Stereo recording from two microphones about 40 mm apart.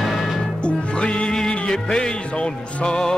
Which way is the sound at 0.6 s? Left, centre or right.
Left.